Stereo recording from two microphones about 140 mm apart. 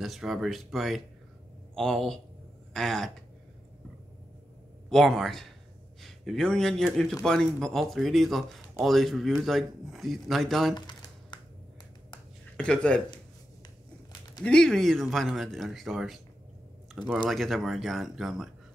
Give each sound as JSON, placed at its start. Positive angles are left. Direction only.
{"t": 0.0, "sound": "a man's voice", "side_deg": 0}
{"t": 4.8, "sound": "a man's voice", "side_deg": 0}
{"t": 10.7, "sound": "typing", "side_deg": 30}
{"t": 12.5, "sound": "speech", "side_deg": 5}
{"t": 14.4, "sound": "a man's voice", "side_deg": 5}